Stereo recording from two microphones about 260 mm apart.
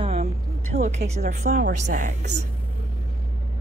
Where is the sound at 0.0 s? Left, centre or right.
Right.